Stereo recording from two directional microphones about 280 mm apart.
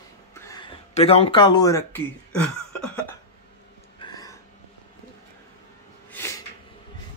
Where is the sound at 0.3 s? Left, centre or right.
Centre.